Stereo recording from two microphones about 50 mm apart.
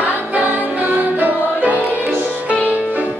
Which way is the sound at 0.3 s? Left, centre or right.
Right.